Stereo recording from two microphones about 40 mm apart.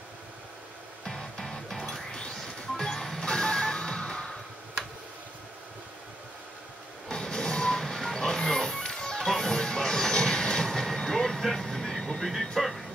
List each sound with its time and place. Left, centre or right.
1.0 s music: centre
7.1 s music: centre
9.2 s train: centre
12.3 s a sound: centre